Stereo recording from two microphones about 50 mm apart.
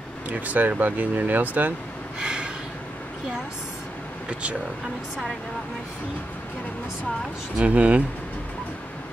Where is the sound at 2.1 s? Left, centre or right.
Centre.